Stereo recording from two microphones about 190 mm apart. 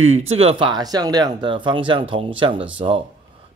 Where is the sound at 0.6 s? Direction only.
20° right (ahead or behind).